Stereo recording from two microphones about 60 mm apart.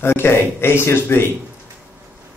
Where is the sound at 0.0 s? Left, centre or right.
Left.